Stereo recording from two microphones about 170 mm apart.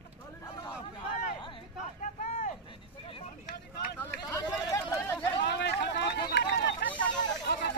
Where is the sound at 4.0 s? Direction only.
20° left (ahead or behind).